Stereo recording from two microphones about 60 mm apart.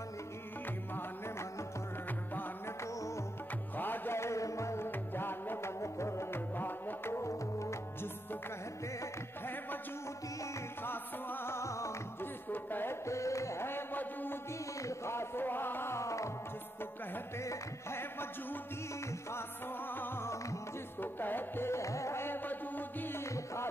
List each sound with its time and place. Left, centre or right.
3.7 s music: left
4.2 s music: left
4.8 s music: left
5.8 s music: left
6.5 s music: left
7.1 s music: left
10.8 s music: left
13.0 s music: left
13.7 s music: left
14.8 s a sound: left
16.0 s music: left
17.4 s music: left
19.9 s music: left
23.2 s music: left